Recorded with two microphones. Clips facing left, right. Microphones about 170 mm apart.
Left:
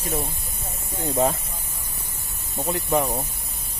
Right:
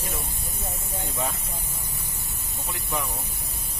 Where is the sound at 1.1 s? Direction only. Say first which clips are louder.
Left 10 dB; 35° left (ahead or behind).